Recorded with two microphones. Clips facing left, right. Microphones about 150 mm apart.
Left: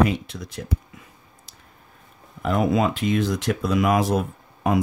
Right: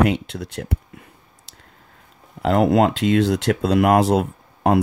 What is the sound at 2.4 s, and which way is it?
Speech, 70° right (ahead or behind).